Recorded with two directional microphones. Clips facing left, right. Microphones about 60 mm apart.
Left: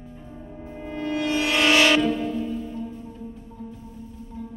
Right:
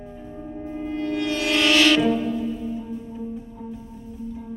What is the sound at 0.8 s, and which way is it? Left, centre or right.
Music, centre.